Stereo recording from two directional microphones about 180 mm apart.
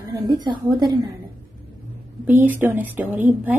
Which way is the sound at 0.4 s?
25° right (ahead or behind).